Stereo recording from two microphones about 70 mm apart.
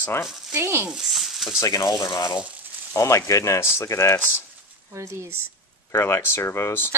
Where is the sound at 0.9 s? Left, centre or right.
Centre.